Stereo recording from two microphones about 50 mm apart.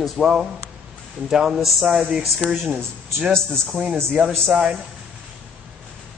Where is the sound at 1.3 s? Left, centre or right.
Centre.